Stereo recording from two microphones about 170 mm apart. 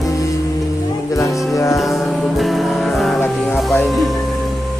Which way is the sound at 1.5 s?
20° left (ahead or behind).